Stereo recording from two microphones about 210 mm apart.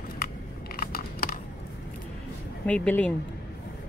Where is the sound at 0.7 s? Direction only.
45° left (ahead or behind).